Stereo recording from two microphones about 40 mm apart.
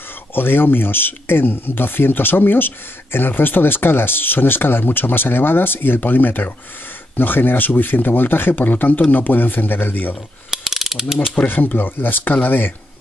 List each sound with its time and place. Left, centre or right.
0.3 s speech: left
10.5 s mechanisms: centre
11.3 s speech: left